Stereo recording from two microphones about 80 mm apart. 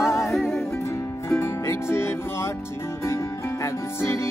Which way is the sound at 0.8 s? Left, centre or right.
Left.